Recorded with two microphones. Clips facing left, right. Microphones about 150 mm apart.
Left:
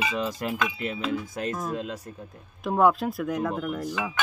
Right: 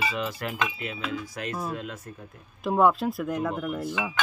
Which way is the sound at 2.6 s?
Centre (ahead or behind).